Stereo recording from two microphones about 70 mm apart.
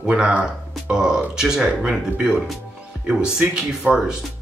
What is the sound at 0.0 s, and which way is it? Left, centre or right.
Speech, centre.